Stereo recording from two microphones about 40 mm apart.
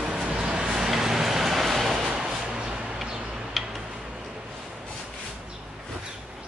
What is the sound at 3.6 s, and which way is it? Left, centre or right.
Tick-tock, centre.